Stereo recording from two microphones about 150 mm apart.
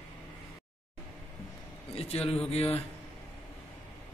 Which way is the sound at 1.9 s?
40° left (ahead or behind).